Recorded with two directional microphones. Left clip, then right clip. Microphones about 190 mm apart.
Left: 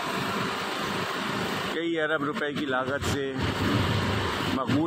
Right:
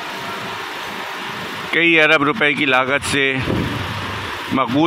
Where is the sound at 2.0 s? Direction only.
25° right (ahead or behind).